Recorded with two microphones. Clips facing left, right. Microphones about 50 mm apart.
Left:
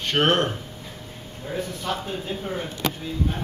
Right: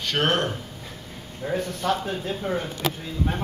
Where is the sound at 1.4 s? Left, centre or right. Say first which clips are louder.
Right 4 dB; right.